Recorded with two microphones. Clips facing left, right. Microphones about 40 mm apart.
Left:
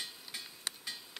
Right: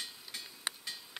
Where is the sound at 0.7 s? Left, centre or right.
Centre.